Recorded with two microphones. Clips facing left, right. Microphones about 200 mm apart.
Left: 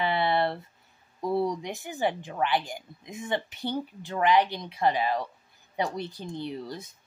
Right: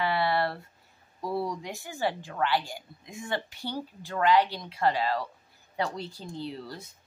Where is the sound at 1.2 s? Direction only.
20° left (ahead or behind).